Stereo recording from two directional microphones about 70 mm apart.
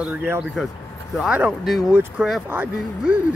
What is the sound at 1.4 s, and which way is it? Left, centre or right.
Speech, centre.